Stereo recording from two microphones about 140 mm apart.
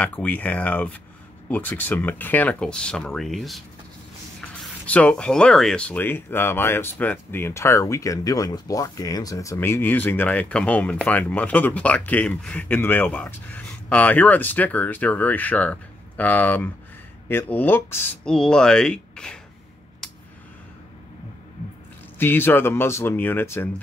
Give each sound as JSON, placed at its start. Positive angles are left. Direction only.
{"t": 0.0, "sound": "speech", "side_deg": 10}
{"t": 18.2, "sound": "speech", "side_deg": 5}
{"t": 22.2, "sound": "speech", "side_deg": 15}